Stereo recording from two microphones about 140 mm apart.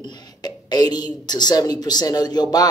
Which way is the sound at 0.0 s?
30° left (ahead or behind).